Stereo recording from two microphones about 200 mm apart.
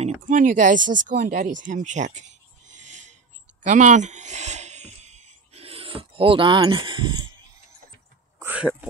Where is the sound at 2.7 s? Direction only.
35° right (ahead or behind).